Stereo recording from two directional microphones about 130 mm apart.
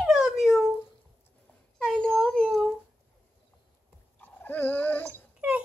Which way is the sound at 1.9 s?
5° left (ahead or behind).